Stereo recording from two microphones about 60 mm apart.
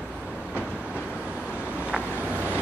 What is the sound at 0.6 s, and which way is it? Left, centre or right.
Train, centre.